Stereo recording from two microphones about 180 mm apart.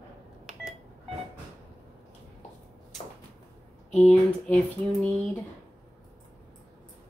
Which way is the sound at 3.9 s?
5° left (ahead or behind).